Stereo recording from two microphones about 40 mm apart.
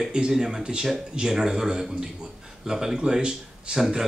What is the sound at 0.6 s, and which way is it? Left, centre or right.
Speech, right.